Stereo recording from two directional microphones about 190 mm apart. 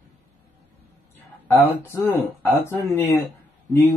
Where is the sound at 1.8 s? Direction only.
15° left (ahead or behind).